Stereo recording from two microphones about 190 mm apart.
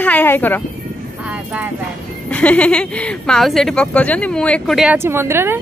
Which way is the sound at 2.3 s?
5° left (ahead or behind).